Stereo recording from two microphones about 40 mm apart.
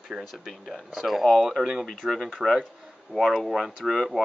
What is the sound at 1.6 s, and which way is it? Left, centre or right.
Speech, centre.